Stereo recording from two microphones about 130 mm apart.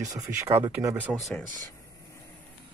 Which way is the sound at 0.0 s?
25° right (ahead or behind).